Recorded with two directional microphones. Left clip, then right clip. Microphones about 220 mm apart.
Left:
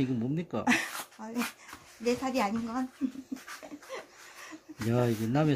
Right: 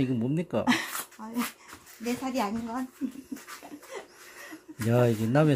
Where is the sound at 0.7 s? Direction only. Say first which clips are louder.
Right 1 dB; 20° left (ahead or behind).